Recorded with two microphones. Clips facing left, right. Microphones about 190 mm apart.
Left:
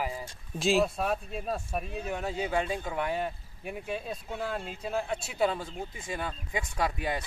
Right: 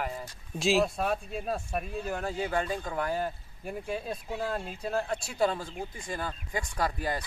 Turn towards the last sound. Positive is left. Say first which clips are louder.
# even
turn(degrees=0)  # may be behind; listen again after turning